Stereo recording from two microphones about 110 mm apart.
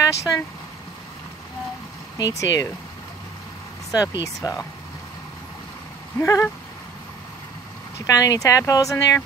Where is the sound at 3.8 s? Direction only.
30° left (ahead or behind).